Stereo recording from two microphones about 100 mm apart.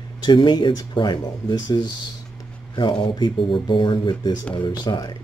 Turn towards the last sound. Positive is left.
turn(degrees=45)  # may be behind; listen again after turning